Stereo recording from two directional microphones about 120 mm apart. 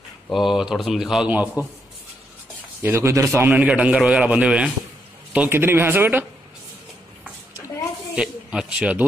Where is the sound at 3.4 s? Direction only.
10° right (ahead or behind).